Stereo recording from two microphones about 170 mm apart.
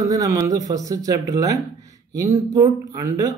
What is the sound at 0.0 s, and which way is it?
Speech, 20° right (ahead or behind).